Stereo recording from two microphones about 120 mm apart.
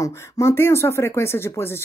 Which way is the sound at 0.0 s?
25° left (ahead or behind).